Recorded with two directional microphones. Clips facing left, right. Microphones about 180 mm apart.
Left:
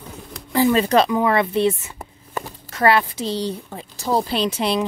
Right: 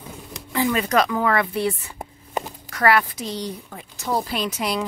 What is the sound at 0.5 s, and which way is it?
A woman's voice, 35° left (ahead or behind).